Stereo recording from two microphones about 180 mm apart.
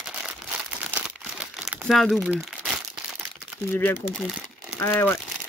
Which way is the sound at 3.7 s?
10° left (ahead or behind).